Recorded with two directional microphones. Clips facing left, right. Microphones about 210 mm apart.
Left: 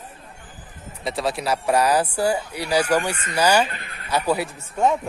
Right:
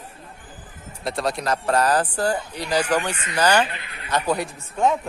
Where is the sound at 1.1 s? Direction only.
Centre (ahead or behind).